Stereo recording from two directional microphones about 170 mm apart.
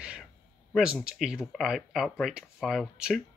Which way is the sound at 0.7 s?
5° right (ahead or behind).